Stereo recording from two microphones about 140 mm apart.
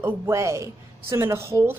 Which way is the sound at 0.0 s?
20° right (ahead or behind).